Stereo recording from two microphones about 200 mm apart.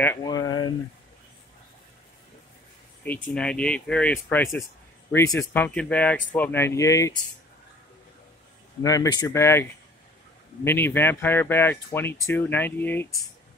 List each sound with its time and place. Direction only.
0.0 s speech: 15° left (ahead or behind)
3.0 s speech: 5° left (ahead or behind)
8.8 s speech: 15° left (ahead or behind)